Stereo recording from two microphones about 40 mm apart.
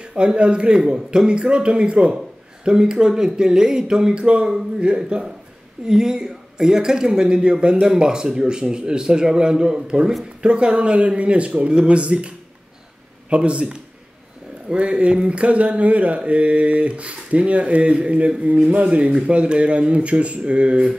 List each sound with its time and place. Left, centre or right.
0.0 s speech: right
5.9 s a man's voice: centre